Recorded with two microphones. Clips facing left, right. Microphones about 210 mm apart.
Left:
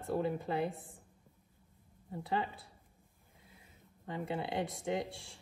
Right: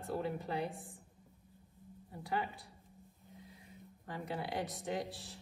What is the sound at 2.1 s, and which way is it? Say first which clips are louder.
Speech: left 3 dB; 25° left (ahead or behind).